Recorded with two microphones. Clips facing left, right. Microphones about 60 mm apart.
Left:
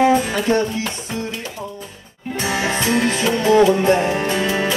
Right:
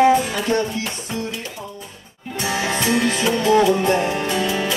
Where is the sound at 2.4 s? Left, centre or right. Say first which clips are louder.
Left 1 dB; left.